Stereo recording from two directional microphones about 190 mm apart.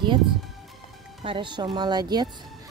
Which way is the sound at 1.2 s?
25° right (ahead or behind).